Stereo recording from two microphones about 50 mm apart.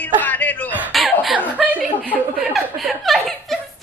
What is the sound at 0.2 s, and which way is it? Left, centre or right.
Chuckle, left.